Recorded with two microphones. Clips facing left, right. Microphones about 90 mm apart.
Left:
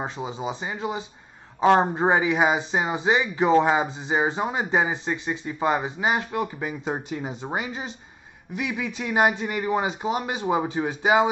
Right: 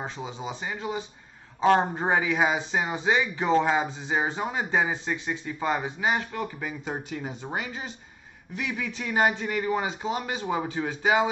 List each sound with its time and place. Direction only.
0.2 s speech: 20° left (ahead or behind)